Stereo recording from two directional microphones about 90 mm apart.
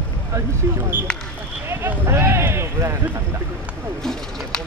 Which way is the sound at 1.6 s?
25° right (ahead or behind).